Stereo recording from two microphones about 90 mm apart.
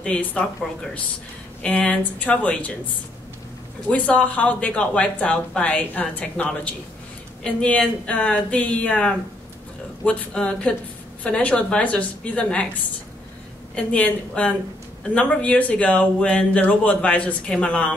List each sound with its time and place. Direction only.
0.0 s speech: 15° left (ahead or behind)
1.6 s speech: 15° left (ahead or behind)
3.9 s speech: 15° left (ahead or behind)
13.7 s speech: 10° left (ahead or behind)